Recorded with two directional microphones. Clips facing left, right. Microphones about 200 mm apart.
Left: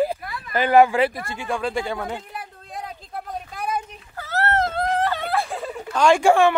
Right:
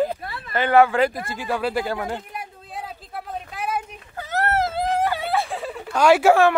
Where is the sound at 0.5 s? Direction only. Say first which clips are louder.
Left 1 dB; 10° left (ahead or behind).